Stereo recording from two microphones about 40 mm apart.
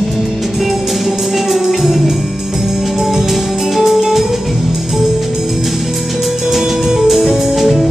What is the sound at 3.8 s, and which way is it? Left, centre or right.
Music, centre.